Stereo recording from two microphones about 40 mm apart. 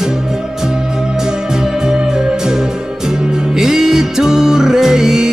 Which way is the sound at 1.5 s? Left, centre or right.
Centre.